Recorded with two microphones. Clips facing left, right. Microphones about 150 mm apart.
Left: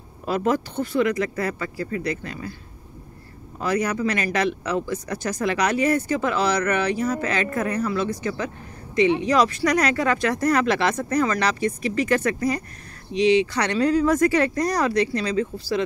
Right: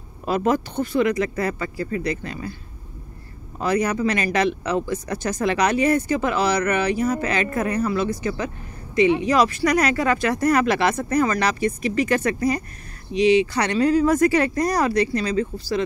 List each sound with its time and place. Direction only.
0.3 s speech: 15° right (ahead or behind)
3.6 s speech: 20° right (ahead or behind); by 15.8 s centre (ahead or behind)